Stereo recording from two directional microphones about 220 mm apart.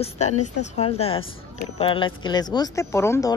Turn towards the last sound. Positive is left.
turn(degrees=10)  # may be behind; listen again after turning